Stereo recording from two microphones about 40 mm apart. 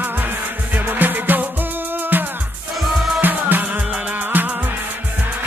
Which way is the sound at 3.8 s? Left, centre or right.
Right.